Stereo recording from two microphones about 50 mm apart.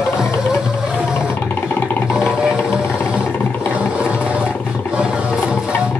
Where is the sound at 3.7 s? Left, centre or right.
Right.